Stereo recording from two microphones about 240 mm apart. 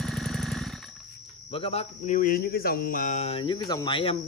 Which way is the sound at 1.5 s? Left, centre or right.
Left.